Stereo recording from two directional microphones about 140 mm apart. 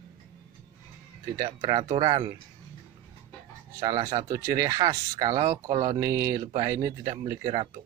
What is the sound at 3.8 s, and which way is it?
Speech, 25° right (ahead or behind).